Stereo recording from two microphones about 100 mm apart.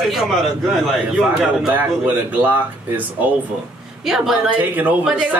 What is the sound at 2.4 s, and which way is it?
Speech, 15° right (ahead or behind).